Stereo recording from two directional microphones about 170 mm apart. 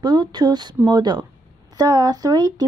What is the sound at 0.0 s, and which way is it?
Speech, 25° right (ahead or behind).